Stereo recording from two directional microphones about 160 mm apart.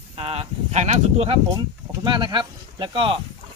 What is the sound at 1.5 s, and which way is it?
Speech, 30° right (ahead or behind).